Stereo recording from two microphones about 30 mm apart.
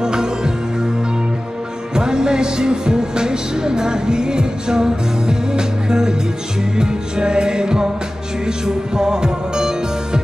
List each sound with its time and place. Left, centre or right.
0.0 s music: right
2.0 s music: right